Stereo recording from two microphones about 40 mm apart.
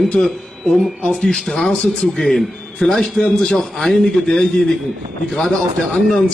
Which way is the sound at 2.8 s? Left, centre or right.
Left.